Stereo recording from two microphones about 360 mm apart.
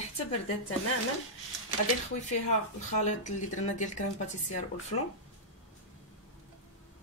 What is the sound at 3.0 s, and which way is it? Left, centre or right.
A woman's voice, centre.